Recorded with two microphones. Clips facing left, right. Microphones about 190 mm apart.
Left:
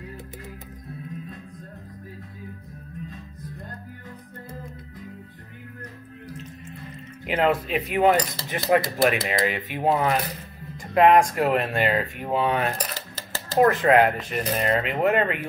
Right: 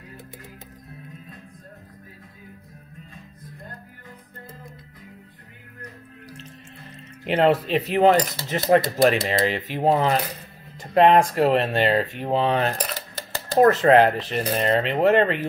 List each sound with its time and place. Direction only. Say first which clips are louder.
7.2 s speech: right 3 dB; 30° right (ahead or behind)
13.7 s speech: right 3 dB; 30° right (ahead or behind)